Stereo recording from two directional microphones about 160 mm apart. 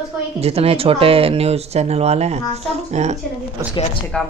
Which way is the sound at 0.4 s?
40° right (ahead or behind).